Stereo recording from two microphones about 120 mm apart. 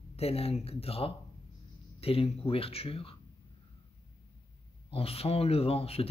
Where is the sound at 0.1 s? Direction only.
55° left (ahead or behind).